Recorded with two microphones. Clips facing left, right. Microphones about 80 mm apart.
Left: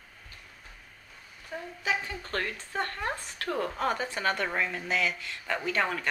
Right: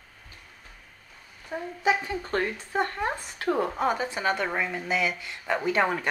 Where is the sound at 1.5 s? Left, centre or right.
Centre.